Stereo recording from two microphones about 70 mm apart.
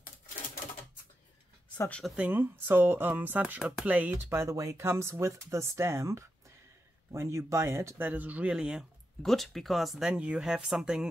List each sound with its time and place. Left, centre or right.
2.1 s speech: right
4.3 s speech: right
8.1 s speech: right
9.2 s speech: centre